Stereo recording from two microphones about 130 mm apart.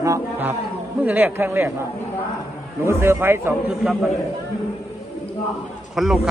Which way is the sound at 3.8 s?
5° right (ahead or behind).